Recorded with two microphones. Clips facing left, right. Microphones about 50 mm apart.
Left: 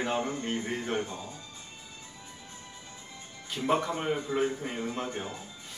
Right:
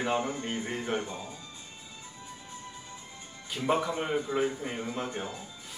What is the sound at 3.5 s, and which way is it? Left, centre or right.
A man's voice, centre.